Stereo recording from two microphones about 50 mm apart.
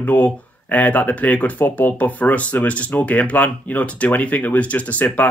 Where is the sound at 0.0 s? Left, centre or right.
Left.